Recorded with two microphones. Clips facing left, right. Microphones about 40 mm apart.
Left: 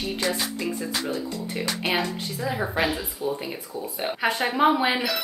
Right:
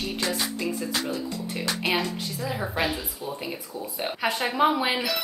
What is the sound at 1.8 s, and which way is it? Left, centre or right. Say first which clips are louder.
Speech: even; left.